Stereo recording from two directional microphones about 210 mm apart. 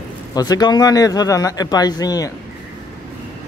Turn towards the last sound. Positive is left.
turn(degrees=15)  # may be behind; listen again after turning